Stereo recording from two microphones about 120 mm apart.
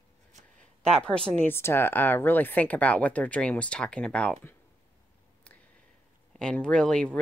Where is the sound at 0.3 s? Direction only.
80° right.